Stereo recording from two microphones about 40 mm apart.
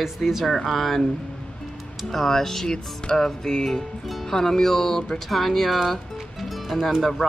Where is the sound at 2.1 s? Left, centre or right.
Centre.